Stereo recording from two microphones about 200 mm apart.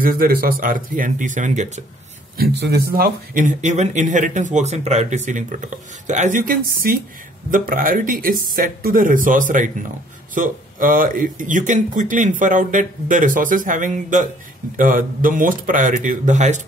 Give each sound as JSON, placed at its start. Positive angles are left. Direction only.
{"t": 0.0, "sound": "speech", "side_deg": -45}
{"t": 2.3, "sound": "speech", "side_deg": -55}